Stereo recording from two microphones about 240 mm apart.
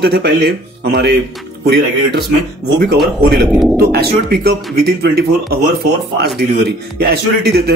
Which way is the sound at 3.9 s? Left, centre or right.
Right.